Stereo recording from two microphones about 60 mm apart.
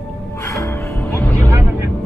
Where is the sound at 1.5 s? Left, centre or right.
Right.